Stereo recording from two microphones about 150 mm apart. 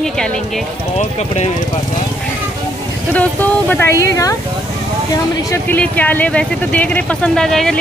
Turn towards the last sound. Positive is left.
turn(degrees=5)  # may be behind; listen again after turning